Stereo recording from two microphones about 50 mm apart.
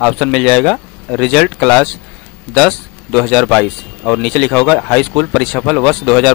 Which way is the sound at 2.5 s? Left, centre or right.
Centre.